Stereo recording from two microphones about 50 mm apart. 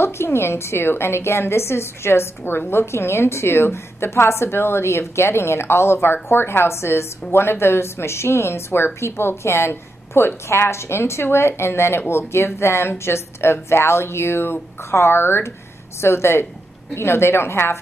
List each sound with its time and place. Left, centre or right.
0.0 s a woman's voice: left